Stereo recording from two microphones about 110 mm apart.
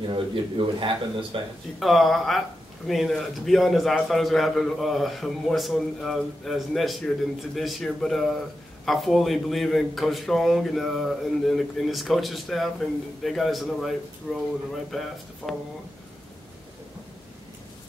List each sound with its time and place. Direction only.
0.1 s speech: 55° right (ahead or behind)
1.8 s a man's voice: centre (ahead or behind)